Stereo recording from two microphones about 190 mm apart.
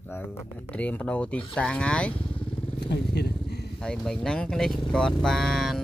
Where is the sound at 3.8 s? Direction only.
5° left (ahead or behind).